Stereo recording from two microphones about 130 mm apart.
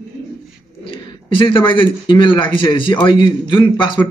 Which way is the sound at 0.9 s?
40° left (ahead or behind).